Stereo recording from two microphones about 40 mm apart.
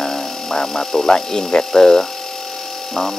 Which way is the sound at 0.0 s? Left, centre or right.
Centre.